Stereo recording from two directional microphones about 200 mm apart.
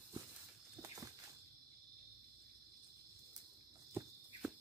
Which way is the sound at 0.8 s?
15° right (ahead or behind).